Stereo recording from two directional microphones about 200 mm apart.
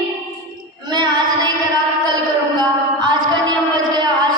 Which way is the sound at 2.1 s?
20° right (ahead or behind).